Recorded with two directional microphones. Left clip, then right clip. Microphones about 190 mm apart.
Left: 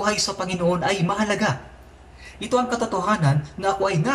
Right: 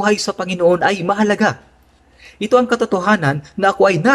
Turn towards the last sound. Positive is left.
turn(degrees=-50)  # may be behind; listen again after turning